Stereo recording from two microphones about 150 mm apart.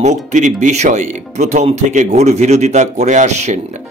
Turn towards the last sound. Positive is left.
turn(degrees=-50)  # may be behind; listen again after turning